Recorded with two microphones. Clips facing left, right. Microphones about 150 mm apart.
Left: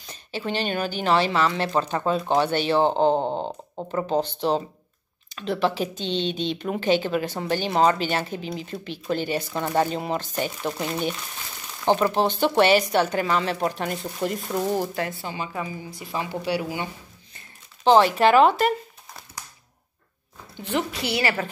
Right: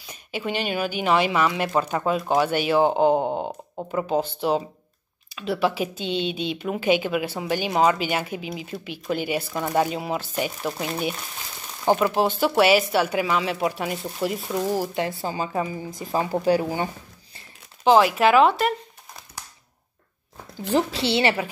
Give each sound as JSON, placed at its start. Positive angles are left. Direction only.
{"t": 0.0, "sound": "speech", "side_deg": -10}
{"t": 15.1, "sound": "speech", "side_deg": -35}
{"t": 15.9, "sound": "speech", "side_deg": -45}
{"t": 17.8, "sound": "speech", "side_deg": -5}
{"t": 20.5, "sound": "a woman's voice", "side_deg": -35}